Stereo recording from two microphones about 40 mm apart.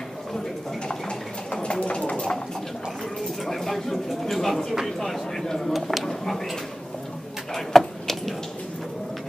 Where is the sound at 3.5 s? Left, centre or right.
Centre.